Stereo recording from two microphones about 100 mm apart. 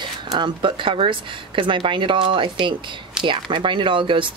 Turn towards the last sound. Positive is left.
turn(degrees=-55)  # may be behind; listen again after turning